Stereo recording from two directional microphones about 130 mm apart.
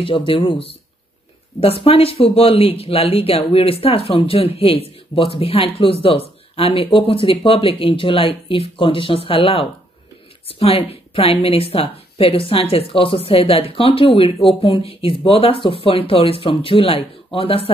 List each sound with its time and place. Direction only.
0.0 s a woman's voice: 45° left (ahead or behind)